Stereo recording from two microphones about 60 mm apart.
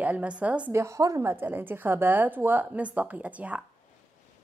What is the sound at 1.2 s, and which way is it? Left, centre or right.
A woman's voice, right.